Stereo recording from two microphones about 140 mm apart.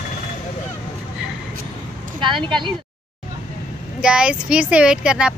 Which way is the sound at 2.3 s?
35° right (ahead or behind).